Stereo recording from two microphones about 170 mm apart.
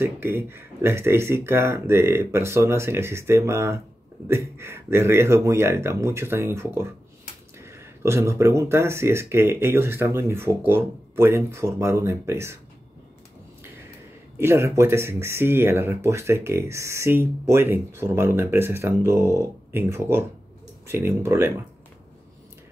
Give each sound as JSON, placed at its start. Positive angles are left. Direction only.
{"t": 0.0, "sound": "speech", "side_deg": -15}
{"t": 14.4, "sound": "speech", "side_deg": -15}